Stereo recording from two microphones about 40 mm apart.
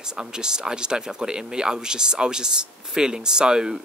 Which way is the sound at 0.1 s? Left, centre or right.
Centre.